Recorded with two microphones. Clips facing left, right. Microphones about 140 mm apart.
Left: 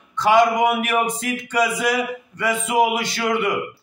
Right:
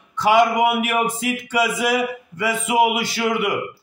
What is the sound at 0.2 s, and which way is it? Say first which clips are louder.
A man's voice: even; 10° right (ahead or behind).